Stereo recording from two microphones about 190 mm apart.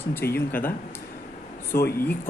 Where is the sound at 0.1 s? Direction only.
10° left (ahead or behind).